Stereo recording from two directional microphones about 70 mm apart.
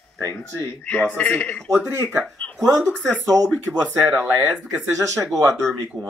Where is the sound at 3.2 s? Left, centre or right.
Right.